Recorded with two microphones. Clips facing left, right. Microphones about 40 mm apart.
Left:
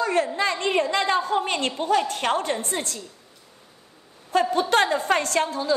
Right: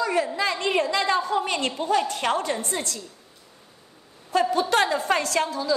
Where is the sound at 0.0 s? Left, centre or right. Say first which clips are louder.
Left 1 dB; left.